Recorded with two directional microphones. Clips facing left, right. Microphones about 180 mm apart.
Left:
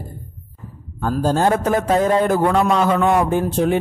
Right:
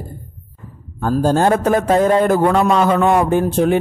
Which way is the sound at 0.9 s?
50° right (ahead or behind).